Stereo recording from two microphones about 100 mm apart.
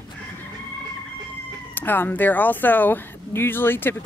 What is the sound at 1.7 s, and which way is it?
Speech, 20° left (ahead or behind).